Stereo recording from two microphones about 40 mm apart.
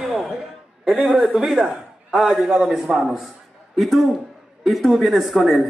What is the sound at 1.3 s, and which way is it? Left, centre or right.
A man's voice, centre.